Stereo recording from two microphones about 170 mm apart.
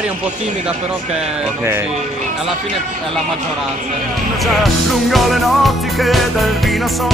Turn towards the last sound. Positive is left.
turn(degrees=0)  # may be behind; listen again after turning